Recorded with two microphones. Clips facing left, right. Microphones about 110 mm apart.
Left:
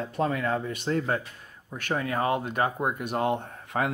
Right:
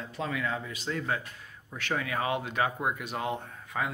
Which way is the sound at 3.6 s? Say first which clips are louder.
Left 5 dB; 65° left (ahead or behind).